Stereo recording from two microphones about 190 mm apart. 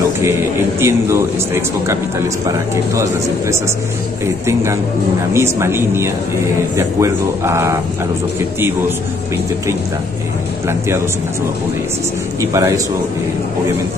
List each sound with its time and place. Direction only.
0.2 s a man's voice: 15° right (ahead or behind)
5.3 s a man's voice: 15° right (ahead or behind)
12.4 s a man's voice: 15° right (ahead or behind)